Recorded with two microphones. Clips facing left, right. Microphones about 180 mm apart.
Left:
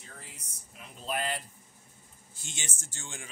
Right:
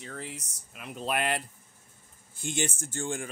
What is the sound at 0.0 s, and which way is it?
Speech, 75° right (ahead or behind).